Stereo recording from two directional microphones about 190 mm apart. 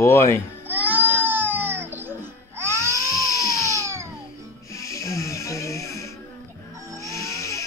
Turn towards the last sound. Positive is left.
turn(degrees=15)  # may be behind; listen again after turning